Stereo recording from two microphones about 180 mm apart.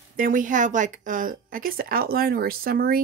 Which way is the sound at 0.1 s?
50° right (ahead or behind).